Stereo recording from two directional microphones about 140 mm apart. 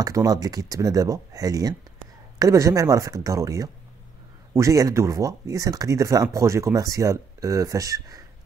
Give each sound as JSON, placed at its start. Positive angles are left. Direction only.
{"t": 0.0, "sound": "speech", "side_deg": -25}